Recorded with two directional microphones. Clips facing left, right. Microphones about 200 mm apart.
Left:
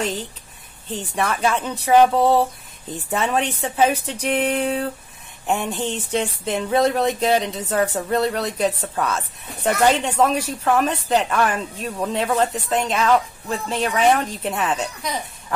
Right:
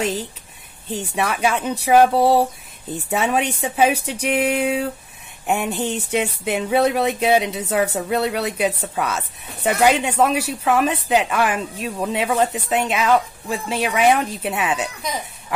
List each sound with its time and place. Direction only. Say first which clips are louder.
0.0 s speech: right 2 dB; 10° right (ahead or behind)